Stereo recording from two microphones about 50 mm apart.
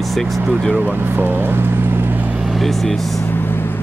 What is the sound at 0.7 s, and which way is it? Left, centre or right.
Speech, right.